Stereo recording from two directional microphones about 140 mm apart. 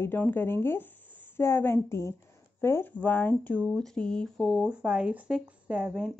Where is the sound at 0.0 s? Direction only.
15° left (ahead or behind).